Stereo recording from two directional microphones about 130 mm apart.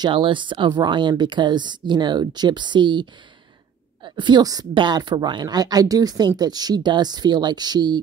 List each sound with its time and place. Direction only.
0.0 s a woman's voice: 40° right (ahead or behind)